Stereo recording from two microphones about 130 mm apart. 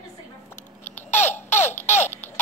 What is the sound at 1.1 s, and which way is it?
Baby laughter, 15° left (ahead or behind).